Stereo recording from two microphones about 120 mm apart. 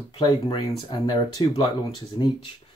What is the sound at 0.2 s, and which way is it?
Speech, 40° left (ahead or behind).